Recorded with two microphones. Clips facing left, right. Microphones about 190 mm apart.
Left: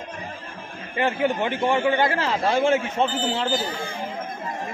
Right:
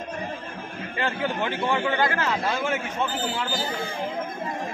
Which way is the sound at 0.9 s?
20° left (ahead or behind).